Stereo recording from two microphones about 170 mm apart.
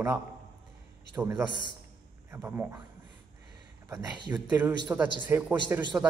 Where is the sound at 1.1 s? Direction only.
10° right (ahead or behind).